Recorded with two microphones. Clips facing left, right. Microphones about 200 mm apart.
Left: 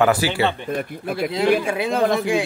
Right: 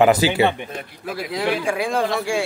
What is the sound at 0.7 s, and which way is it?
Speech, 55° left (ahead or behind).